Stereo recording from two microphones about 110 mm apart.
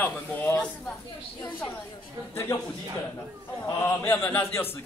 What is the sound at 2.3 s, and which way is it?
Speech, 20° left (ahead or behind).